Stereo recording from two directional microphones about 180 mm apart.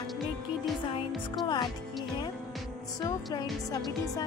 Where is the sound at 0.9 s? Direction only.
25° left (ahead or behind).